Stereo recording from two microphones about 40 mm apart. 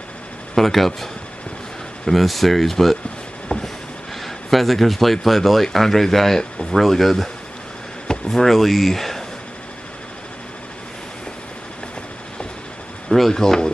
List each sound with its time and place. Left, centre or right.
0.6 s speech: centre
2.0 s speech: centre
3.5 s vehicle: left
4.2 s speech: centre
8.3 s speech: centre
13.3 s speech: centre